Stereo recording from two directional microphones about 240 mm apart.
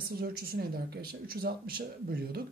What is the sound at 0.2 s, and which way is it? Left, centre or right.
Speech, right.